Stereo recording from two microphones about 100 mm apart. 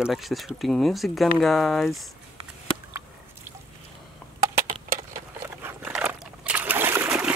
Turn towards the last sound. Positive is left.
turn(degrees=-25)  # may be behind; listen again after turning